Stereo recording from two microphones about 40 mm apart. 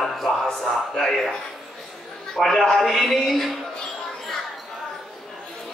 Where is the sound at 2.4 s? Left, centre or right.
Centre.